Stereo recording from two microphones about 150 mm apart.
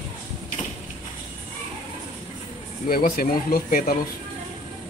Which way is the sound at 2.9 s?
75° left (ahead or behind).